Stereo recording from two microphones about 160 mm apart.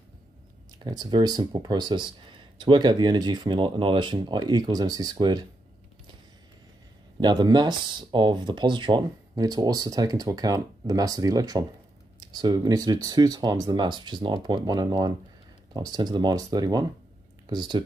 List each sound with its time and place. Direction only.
0.8 s speech: 25° right (ahead or behind)
7.2 s speech: 25° right (ahead or behind)